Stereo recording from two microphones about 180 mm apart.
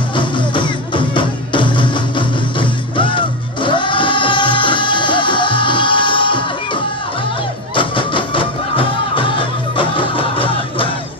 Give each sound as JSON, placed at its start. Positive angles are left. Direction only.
{"t": 0.1, "sound": "music", "side_deg": 25}